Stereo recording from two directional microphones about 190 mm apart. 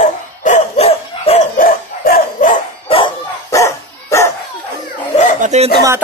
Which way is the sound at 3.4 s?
15° left (ahead or behind).